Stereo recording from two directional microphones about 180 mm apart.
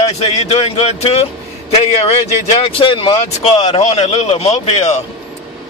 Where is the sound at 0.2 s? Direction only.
35° left (ahead or behind).